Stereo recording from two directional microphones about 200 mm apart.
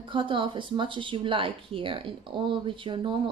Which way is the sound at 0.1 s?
25° right (ahead or behind).